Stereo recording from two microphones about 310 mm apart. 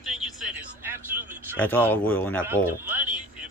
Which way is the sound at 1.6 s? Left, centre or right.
Centre.